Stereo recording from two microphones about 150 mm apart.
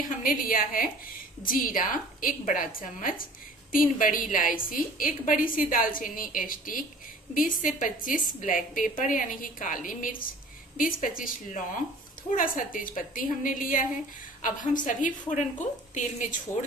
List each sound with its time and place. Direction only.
0.2 s a woman's voice: 65° left (ahead or behind)